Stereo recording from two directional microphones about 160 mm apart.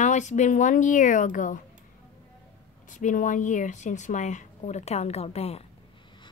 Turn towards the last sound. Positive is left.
turn(degrees=40)  # may be behind; listen again after turning